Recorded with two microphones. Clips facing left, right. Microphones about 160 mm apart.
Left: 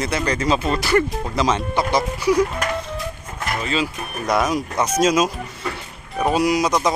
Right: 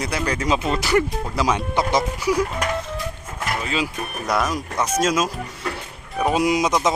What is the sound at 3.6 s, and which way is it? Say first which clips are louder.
Speech: left 2 dB; 10° right (ahead or behind).